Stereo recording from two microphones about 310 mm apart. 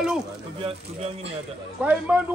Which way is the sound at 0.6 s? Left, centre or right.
Centre.